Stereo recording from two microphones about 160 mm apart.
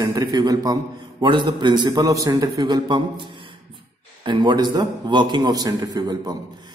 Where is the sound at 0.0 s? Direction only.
25° right (ahead or behind).